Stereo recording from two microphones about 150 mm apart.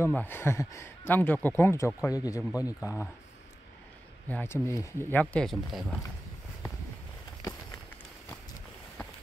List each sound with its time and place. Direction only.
0.0 s speech: 15° left (ahead or behind)
4.3 s speech: 15° left (ahead or behind)
5.2 s speech: 5° left (ahead or behind)